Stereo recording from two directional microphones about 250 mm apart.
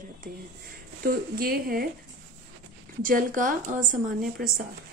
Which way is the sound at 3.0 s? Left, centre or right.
Right.